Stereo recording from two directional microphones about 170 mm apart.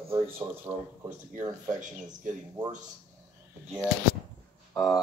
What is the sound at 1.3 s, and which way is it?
Speech, 50° right (ahead or behind).